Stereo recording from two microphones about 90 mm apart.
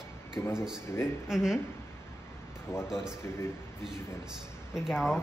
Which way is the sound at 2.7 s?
35° left (ahead or behind).